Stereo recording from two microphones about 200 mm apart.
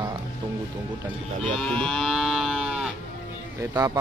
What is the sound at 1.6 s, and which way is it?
Moo, 5° left (ahead or behind).